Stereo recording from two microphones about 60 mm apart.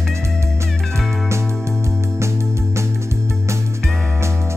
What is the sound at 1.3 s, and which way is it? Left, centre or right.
Music, right.